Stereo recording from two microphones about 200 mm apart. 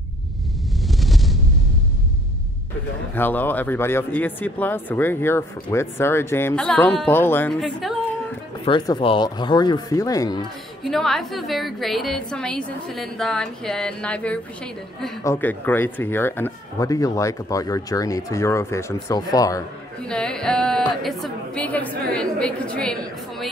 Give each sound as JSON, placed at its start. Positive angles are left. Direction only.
{"t": 0.9, "sound": "a sound", "side_deg": 0}
{"t": 3.2, "sound": "speech", "side_deg": 10}
{"t": 8.6, "sound": "speech", "side_deg": 20}
{"t": 10.8, "sound": "a woman's voice", "side_deg": 0}
{"t": 20.1, "sound": "a woman's voice", "side_deg": 5}